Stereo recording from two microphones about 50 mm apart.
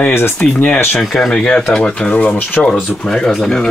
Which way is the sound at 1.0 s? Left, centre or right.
Centre.